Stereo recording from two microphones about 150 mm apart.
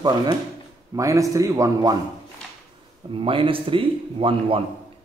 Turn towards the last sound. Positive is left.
turn(degrees=-35)  # may be behind; listen again after turning